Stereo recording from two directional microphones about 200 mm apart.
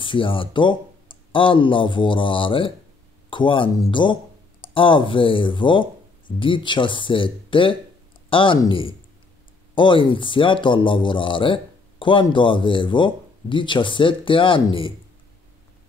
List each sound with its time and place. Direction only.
0.0 s speech: 25° left (ahead or behind)